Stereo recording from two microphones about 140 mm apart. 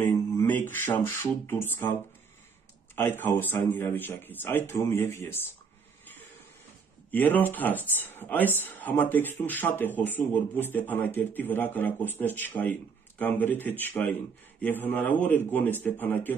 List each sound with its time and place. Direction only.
0.4 s speech: 10° left (ahead or behind)
3.0 s speech: 15° left (ahead or behind)
7.1 s speech: 15° left (ahead or behind)